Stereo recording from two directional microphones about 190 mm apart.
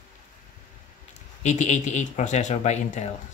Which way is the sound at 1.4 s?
35° left (ahead or behind).